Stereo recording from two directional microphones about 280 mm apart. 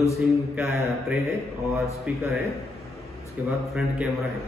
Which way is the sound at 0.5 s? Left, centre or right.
Centre.